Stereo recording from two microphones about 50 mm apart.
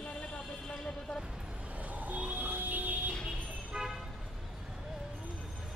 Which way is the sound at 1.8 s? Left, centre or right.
Right.